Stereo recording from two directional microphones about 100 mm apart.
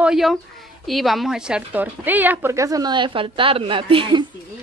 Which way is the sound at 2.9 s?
60° right (ahead or behind).